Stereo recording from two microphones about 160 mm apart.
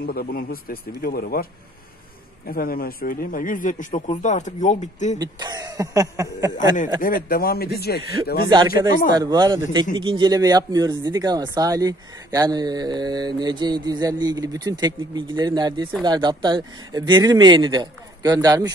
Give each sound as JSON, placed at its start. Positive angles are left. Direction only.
{"t": 0.0, "sound": "a man's voice", "side_deg": 70}
{"t": 5.2, "sound": "speech", "side_deg": -25}
{"t": 7.0, "sound": "speech", "side_deg": 65}
{"t": 8.5, "sound": "speech", "side_deg": -25}